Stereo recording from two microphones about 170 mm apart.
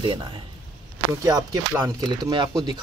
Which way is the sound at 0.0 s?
30° right (ahead or behind).